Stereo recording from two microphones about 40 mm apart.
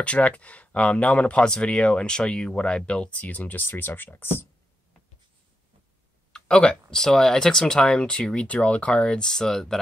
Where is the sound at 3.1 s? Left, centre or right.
Left.